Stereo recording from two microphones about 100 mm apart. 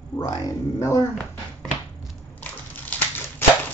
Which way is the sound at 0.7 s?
30° left (ahead or behind).